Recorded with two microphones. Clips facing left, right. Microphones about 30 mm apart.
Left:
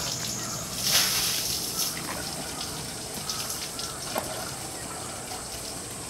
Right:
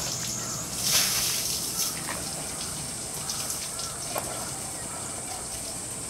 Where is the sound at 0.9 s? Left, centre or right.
Centre.